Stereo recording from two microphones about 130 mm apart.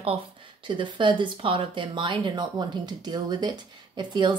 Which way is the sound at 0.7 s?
35° right (ahead or behind).